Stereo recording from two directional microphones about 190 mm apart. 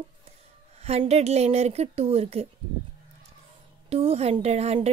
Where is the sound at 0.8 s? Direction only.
35° right (ahead or behind).